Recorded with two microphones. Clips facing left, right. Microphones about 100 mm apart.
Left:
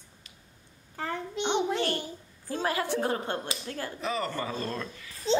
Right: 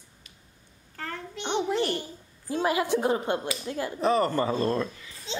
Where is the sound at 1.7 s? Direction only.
15° right (ahead or behind).